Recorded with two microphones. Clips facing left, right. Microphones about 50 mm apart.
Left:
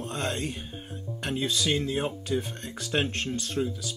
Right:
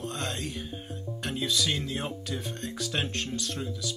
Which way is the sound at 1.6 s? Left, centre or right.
Centre.